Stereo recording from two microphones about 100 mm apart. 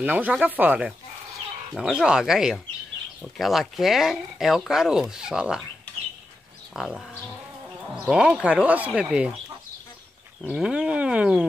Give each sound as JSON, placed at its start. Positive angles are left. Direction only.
{"t": 0.0, "sound": "speech", "side_deg": -15}
{"t": 6.7, "sound": "speech", "side_deg": -5}
{"t": 10.4, "sound": "speech", "side_deg": -5}